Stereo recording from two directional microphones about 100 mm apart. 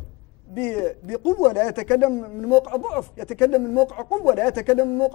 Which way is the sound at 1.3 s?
20° left (ahead or behind).